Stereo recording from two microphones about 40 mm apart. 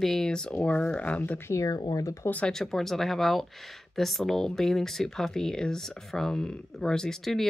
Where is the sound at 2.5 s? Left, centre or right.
Centre.